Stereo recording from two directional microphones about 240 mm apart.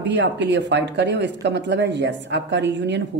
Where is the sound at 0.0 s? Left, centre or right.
Right.